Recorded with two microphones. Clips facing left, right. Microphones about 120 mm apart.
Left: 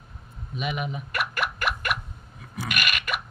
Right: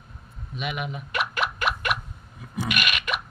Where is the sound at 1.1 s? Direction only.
20° right (ahead or behind).